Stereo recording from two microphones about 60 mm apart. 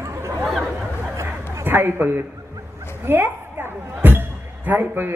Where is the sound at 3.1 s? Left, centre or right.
Right.